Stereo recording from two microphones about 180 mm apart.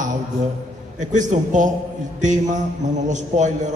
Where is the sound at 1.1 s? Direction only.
45° right (ahead or behind).